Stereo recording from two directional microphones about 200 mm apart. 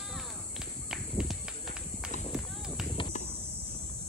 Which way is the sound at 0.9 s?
5° right (ahead or behind).